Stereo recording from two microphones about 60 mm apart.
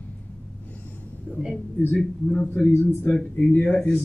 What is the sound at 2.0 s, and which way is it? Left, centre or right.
Speech, centre.